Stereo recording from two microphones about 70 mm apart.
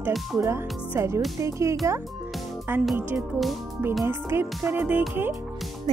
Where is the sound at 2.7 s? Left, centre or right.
Right.